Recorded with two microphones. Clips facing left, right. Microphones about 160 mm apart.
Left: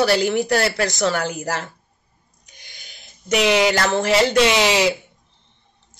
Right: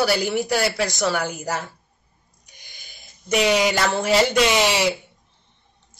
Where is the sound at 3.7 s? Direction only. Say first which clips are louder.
Left 2 dB; centre (ahead or behind).